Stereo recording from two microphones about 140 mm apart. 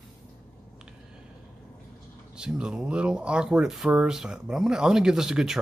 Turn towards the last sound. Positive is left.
turn(degrees=-5)  # may be behind; listen again after turning